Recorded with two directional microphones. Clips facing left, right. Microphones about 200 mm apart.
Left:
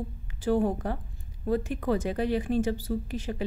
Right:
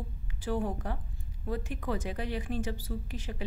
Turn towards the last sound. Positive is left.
turn(degrees=40)  # may be behind; listen again after turning